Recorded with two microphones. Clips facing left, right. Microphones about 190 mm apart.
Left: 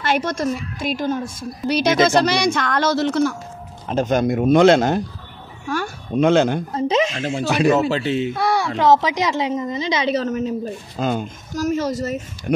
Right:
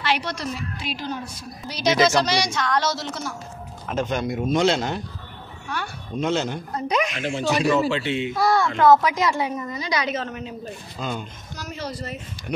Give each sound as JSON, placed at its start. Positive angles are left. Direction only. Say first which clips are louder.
{"t": 0.0, "sound": "speech", "louder": "left 5 dB", "side_deg": 45}
{"t": 1.7, "sound": "a woman's voice", "louder": "left 4 dB", "side_deg": 60}
{"t": 3.8, "sound": "a woman's voice", "louder": "left 6 dB", "side_deg": 35}
{"t": 6.7, "sound": "a woman's voice", "louder": "left 5 dB", "side_deg": 25}
{"t": 7.4, "sound": "a woman's voice", "louder": "left 4 dB", "side_deg": 65}
{"t": 7.9, "sound": "speech", "louder": "left 4 dB", "side_deg": 40}
{"t": 8.8, "sound": "a woman's voice", "louder": "even", "side_deg": 20}
{"t": 10.1, "sound": "speech", "louder": "left 9 dB", "side_deg": 40}